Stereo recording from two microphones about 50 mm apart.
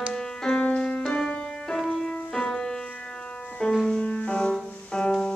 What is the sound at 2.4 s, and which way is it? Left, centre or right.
Music, centre.